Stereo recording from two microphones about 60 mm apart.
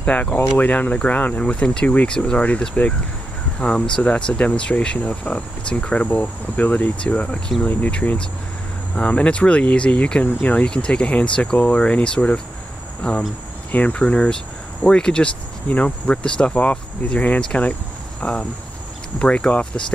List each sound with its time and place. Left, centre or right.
0.0 s speech: left